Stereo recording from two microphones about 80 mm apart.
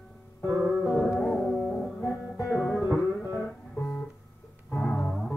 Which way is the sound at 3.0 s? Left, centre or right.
Left.